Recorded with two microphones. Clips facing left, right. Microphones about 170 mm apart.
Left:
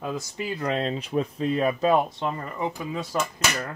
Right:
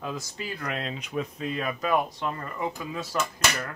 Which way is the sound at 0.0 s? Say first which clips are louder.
Left 4 dB; 20° left (ahead or behind).